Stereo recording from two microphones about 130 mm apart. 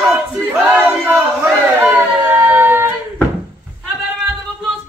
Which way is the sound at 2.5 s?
15° right (ahead or behind).